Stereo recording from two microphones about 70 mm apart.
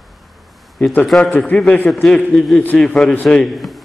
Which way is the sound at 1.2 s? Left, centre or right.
Left.